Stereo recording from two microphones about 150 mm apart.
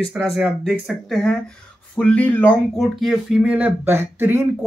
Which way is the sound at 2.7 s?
Centre (ahead or behind).